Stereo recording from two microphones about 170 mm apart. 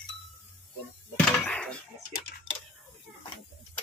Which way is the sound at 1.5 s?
5° left (ahead or behind).